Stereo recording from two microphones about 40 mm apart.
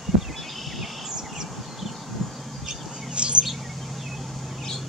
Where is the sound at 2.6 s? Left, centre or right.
Centre.